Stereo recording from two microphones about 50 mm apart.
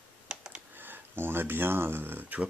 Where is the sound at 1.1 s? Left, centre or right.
Right.